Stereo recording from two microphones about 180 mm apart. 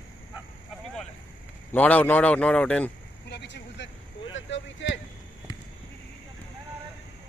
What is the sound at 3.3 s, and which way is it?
Vehicle, 75° left (ahead or behind).